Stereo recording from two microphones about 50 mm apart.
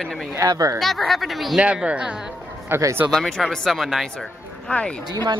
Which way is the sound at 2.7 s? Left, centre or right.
Right.